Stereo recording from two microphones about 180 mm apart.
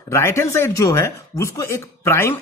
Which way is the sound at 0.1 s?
15° left (ahead or behind).